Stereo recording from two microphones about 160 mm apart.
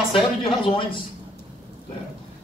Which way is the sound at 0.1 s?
35° left (ahead or behind).